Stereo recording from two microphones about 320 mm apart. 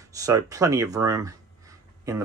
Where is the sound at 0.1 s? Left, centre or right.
Centre.